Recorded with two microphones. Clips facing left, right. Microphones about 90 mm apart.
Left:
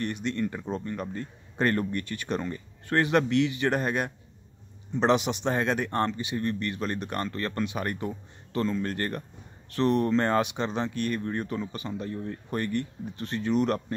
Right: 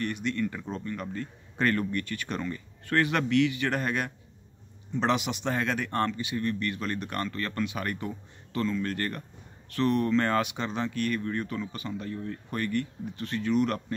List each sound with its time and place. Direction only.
0.0 s speech: 25° left (ahead or behind)